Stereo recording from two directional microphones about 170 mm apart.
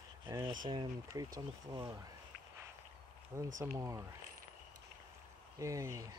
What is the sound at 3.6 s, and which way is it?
Speech, 15° right (ahead or behind).